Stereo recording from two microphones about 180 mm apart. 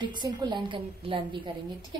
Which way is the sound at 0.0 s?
25° right (ahead or behind).